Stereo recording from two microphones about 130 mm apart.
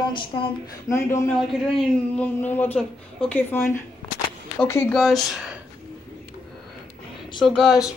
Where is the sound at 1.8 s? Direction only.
10° left (ahead or behind).